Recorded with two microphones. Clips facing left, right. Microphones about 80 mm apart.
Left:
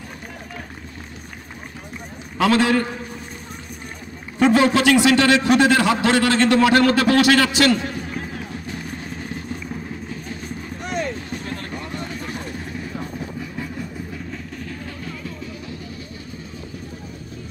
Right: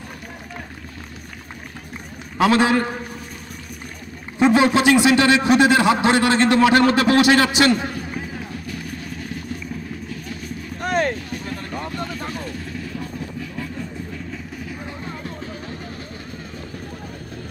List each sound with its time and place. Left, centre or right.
2.3 s a man's voice: right
4.4 s a man's voice: centre
8.6 s vehicle: left
10.8 s a sound: right
11.1 s a sound: left
12.3 s vehicle: left
15.0 s vehicle: right